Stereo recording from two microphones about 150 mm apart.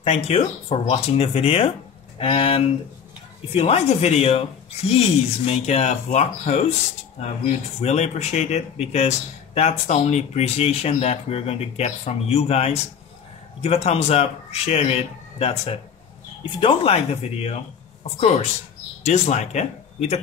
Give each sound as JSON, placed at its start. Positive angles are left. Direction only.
{"t": 0.0, "sound": "speech", "side_deg": 45}
{"t": 19.0, "sound": "speech", "side_deg": 50}